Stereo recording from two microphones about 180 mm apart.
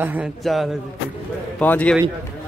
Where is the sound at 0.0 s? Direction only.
10° right (ahead or behind).